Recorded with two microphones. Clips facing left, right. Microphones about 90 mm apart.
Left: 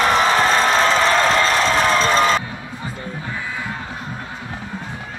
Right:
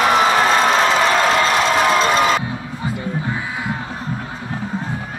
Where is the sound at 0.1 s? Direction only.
35° left (ahead or behind).